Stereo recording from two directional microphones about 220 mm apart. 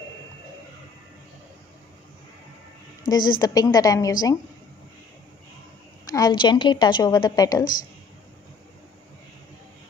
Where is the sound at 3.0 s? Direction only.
20° left (ahead or behind).